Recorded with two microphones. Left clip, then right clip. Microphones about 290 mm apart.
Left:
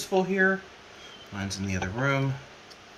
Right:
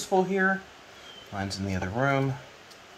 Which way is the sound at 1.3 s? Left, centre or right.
Centre.